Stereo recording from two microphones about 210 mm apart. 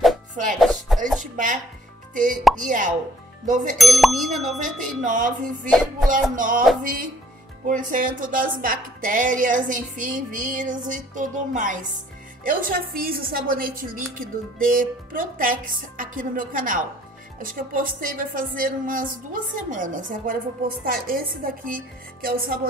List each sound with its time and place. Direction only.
0.0 s music: centre (ahead or behind)
1.3 s speech: 40° right (ahead or behind)
3.7 s speech: centre (ahead or behind)
5.0 s speech: 40° right (ahead or behind)
5.7 s speech: centre (ahead or behind)
6.3 s a woman's voice: 40° right (ahead or behind)